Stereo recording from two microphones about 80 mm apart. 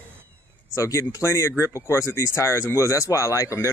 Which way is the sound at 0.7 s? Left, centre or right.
Left.